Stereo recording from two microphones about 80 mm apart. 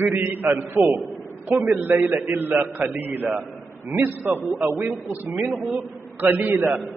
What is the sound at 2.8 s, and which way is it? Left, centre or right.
A man's voice, centre.